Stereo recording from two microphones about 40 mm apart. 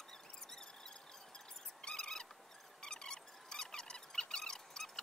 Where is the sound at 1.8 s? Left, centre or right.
Centre.